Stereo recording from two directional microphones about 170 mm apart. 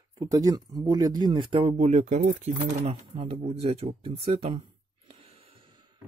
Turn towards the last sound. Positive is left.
turn(degrees=-35)  # may be behind; listen again after turning